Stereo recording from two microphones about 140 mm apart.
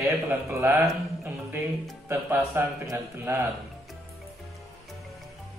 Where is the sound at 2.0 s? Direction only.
15° right (ahead or behind).